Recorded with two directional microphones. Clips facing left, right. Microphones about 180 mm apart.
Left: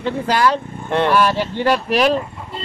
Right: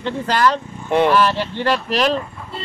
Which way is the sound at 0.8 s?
10° right (ahead or behind).